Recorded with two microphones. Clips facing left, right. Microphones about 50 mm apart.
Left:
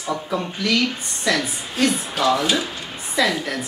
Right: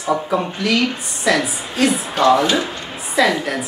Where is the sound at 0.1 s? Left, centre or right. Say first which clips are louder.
Right 6 dB; centre.